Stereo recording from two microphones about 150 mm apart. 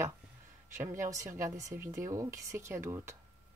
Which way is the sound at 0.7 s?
20° right (ahead or behind).